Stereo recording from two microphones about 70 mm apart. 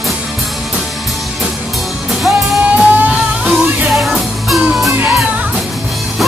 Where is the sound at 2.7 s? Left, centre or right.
Centre.